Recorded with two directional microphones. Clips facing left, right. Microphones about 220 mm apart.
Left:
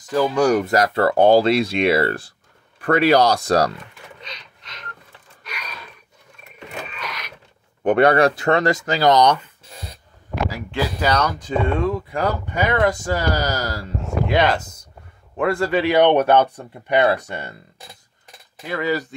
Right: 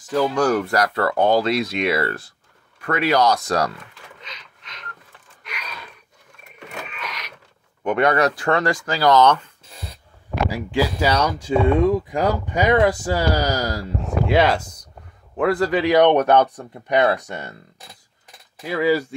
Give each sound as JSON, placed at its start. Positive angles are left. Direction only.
{"t": 0.1, "sound": "speech", "side_deg": 5}
{"t": 6.9, "sound": "a sound", "side_deg": 35}
{"t": 7.8, "sound": "speech", "side_deg": 35}
{"t": 10.5, "sound": "speech", "side_deg": -10}
{"t": 18.6, "sound": "speech", "side_deg": -5}